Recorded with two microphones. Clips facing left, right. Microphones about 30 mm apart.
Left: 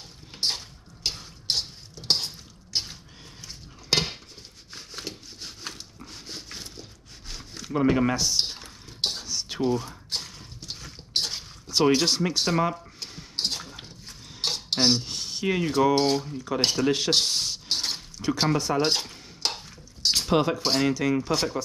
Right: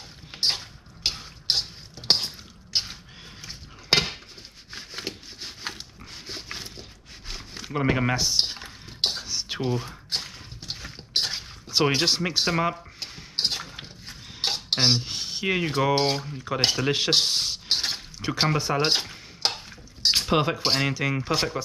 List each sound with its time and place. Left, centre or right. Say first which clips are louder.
0.5 s drip: right 4 dB; right
3.4 s a sound: right 3 dB; right
20.0 s speech: right 1 dB; right